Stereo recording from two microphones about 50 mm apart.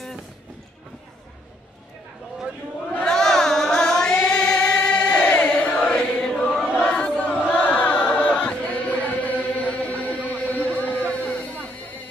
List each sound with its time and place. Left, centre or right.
3.0 s singing: centre
5.7 s chant: left